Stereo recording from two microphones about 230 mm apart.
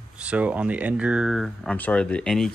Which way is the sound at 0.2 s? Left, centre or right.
Centre.